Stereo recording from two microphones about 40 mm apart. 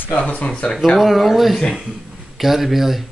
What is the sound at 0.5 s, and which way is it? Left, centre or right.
Speech, left.